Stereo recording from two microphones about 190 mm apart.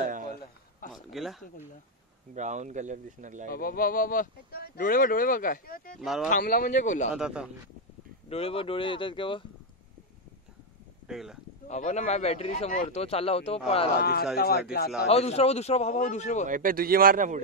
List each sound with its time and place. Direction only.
0.8 s a sound: 45° left (ahead or behind)
1.1 s speech: centre (ahead or behind)
2.3 s speech: 40° right (ahead or behind)
3.4 s speech: 50° left (ahead or behind)
7.1 s speech: 5° right (ahead or behind)
8.3 s speech: 30° left (ahead or behind)
11.1 s speech: centre (ahead or behind)
11.6 s speech: 40° left (ahead or behind)
13.9 s speech: 55° left (ahead or behind)
15.0 s speech: 35° left (ahead or behind)
16.4 s a man's voice: 45° right (ahead or behind)